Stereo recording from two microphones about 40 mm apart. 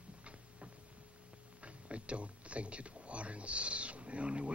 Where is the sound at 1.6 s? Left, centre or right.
Right.